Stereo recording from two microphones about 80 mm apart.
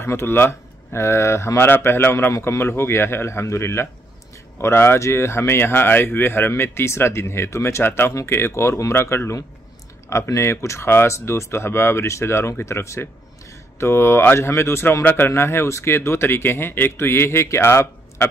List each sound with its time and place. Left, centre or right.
0.0 s speech: left